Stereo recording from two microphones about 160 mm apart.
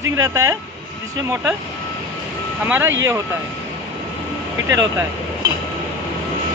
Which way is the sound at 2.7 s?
15° right (ahead or behind).